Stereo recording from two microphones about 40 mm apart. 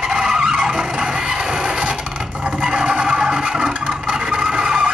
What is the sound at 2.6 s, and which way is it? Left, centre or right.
Vehicle, right.